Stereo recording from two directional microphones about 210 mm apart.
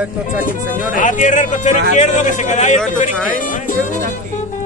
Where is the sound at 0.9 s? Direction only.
40° left (ahead or behind).